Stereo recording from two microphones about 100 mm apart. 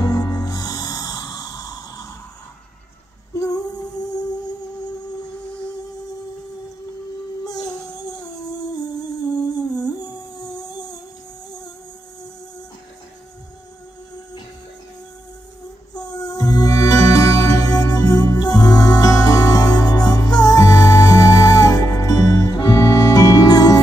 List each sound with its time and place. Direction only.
0.0 s music: 40° left (ahead or behind)
3.3 s female singing: 40° left (ahead or behind)
7.4 s music: 40° left (ahead or behind)
15.9 s music: 40° left (ahead or behind)